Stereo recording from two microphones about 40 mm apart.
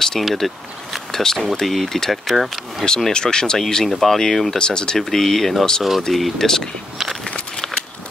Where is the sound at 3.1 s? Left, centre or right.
Centre.